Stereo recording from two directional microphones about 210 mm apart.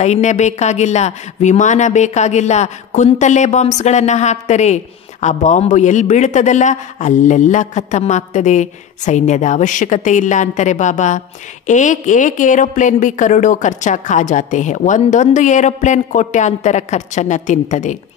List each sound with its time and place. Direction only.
0.0 s a woman's voice: 35° left (ahead or behind)